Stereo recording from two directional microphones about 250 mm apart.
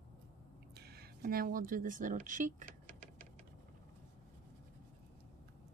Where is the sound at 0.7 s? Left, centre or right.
Right.